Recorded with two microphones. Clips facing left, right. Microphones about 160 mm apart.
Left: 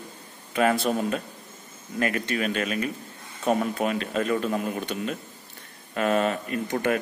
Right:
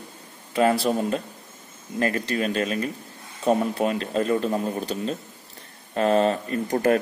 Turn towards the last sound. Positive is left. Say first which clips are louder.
# right 4 dB
turn(degrees=-35)  # may be behind; listen again after turning